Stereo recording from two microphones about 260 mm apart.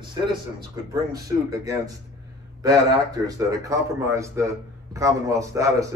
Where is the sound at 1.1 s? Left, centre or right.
Centre.